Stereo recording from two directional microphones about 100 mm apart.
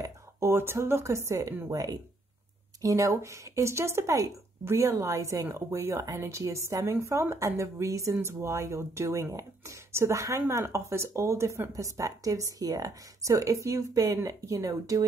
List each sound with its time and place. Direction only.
0.4 s speech: 25° right (ahead or behind)